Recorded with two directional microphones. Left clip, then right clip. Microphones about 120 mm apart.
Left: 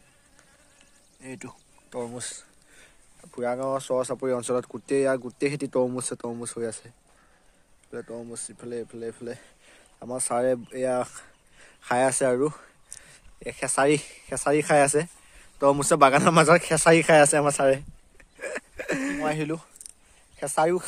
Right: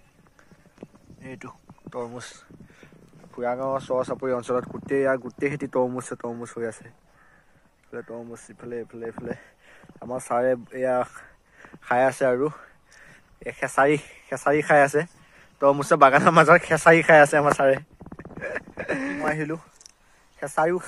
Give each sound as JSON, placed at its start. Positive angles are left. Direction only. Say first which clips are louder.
{"t": 1.2, "sound": "a sound", "louder": "right 1 dB", "side_deg": 45}
{"t": 3.3, "sound": "speech", "louder": "right 1 dB", "side_deg": 50}
{"t": 8.2, "sound": "speech", "louder": "even", "side_deg": 20}
{"t": 11.8, "sound": "speech", "louder": "right 2 dB", "side_deg": 55}
{"t": 15.3, "sound": "a man's voice", "louder": "right 2 dB", "side_deg": 55}
{"t": 18.4, "sound": "a sound", "louder": "right 2 dB", "side_deg": 50}
{"t": 19.2, "sound": "speech", "louder": "right 2 dB", "side_deg": 25}